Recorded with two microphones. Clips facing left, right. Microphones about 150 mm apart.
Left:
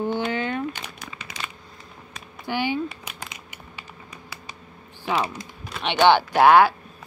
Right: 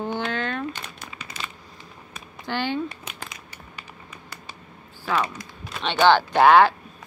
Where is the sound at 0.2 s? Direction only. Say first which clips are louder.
Left 2 dB; 10° left (ahead or behind).